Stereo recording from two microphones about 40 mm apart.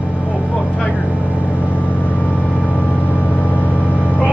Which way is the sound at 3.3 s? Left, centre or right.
Left.